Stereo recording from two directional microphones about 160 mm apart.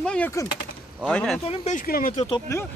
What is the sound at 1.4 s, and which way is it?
Speech, 40° left (ahead or behind).